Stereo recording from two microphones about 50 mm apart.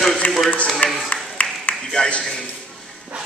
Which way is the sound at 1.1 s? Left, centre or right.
Left.